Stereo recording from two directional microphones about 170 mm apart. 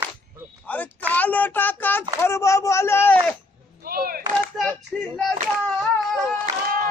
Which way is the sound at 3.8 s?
60° right (ahead or behind).